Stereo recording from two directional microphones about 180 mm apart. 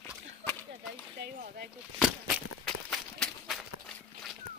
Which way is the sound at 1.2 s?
55° right (ahead or behind).